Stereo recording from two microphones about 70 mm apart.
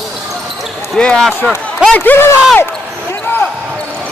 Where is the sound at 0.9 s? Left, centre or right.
Centre.